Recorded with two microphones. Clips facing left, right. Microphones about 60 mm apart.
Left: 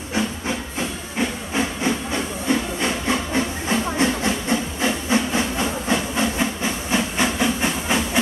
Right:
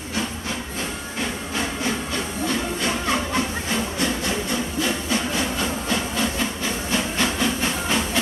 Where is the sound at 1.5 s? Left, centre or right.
Left.